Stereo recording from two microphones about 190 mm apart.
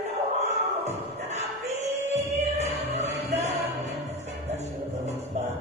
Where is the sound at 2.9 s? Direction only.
35° right (ahead or behind).